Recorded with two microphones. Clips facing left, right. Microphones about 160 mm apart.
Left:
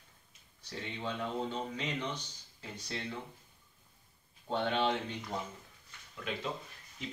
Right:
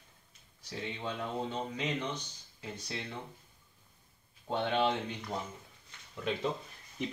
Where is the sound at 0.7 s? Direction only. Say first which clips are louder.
Right 1 dB; 5° right (ahead or behind).